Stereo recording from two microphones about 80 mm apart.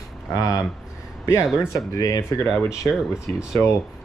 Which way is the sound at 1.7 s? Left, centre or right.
Left.